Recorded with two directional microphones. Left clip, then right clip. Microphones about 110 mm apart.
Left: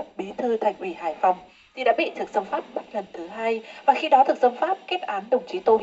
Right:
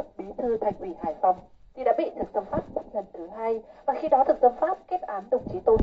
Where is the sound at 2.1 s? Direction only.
15° left (ahead or behind).